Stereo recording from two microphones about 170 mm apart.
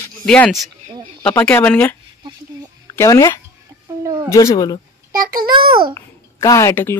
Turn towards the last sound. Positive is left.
turn(degrees=15)  # may be behind; listen again after turning